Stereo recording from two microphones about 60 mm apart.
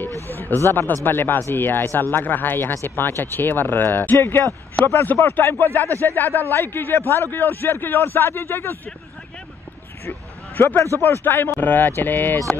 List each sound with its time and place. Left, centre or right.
0.3 s a man's voice: left
10.0 s a sound: left
11.0 s a man's voice: left